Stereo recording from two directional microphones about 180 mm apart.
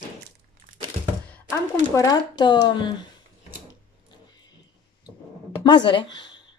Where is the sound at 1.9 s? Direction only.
20° left (ahead or behind).